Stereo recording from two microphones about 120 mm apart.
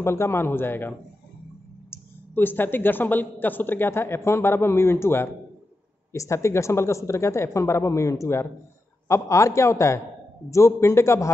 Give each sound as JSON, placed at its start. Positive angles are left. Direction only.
{"t": 0.0, "sound": "speech", "side_deg": 20}